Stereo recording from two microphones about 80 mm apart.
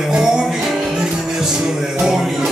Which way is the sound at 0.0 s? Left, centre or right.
Centre.